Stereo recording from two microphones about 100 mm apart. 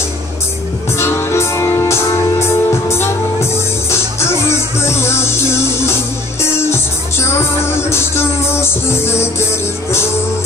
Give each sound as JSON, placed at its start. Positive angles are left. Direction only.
{"t": 0.9, "sound": "music", "side_deg": 25}
{"t": 4.5, "sound": "music", "side_deg": 25}